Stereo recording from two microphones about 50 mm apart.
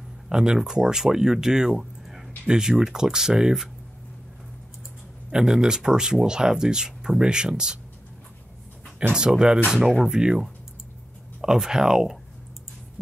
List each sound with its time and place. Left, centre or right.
0.3 s speech: centre
5.3 s speech: centre
9.1 s speech: centre